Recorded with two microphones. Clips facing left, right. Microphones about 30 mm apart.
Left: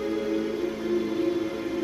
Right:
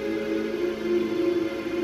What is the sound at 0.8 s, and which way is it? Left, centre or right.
Music, centre.